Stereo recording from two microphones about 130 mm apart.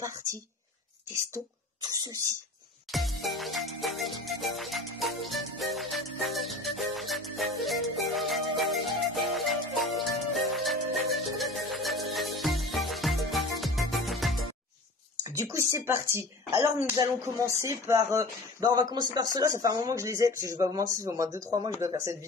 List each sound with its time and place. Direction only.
0.0 s speech: 25° right (ahead or behind)
2.9 s music: centre (ahead or behind)
15.2 s speech: 20° right (ahead or behind)